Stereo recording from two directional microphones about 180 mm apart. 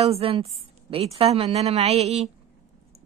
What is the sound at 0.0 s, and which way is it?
A woman's voice, 30° right (ahead or behind).